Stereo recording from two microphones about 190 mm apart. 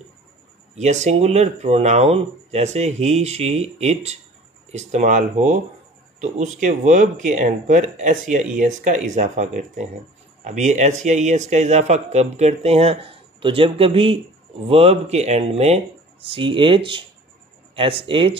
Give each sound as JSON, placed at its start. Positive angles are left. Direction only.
{"t": 0.7, "sound": "a man's voice", "side_deg": -35}